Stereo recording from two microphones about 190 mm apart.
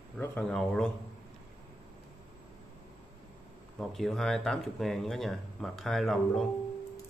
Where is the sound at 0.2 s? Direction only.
10° left (ahead or behind).